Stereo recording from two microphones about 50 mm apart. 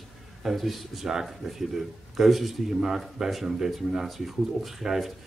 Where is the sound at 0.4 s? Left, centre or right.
Centre.